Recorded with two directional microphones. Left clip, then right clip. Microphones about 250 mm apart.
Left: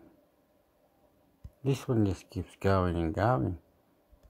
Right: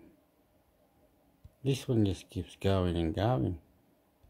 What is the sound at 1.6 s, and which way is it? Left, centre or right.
Speech, centre.